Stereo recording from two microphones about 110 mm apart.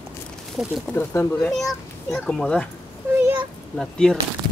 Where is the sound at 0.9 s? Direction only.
15° left (ahead or behind).